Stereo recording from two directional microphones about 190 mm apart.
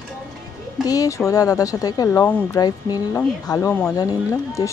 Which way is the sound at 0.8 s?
20° left (ahead or behind).